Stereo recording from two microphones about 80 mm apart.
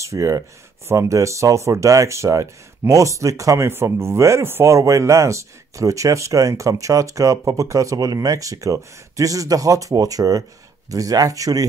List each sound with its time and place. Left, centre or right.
0.0 s speech: right